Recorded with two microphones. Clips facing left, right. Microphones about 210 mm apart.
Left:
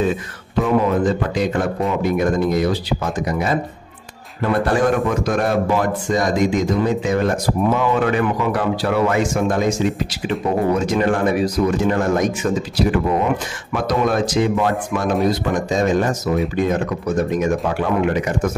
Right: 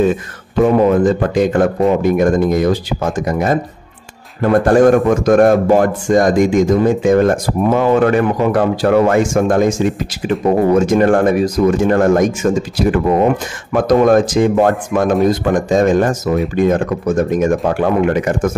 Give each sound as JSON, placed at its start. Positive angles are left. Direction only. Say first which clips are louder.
{"t": 1.0, "sound": "speech", "louder": "right 6 dB", "side_deg": -50}